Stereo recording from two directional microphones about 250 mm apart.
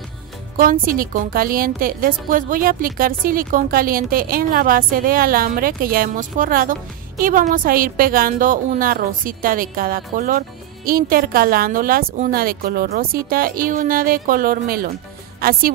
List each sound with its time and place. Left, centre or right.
0.6 s a woman's voice: right